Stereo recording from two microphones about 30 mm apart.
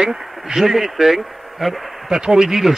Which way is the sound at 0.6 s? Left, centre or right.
Centre.